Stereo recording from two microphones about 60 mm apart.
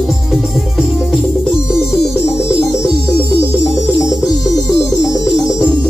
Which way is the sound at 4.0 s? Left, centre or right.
Centre.